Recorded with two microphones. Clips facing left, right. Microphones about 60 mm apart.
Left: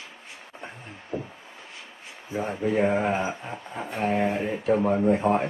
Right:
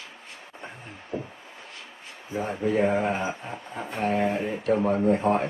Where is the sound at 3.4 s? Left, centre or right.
Centre.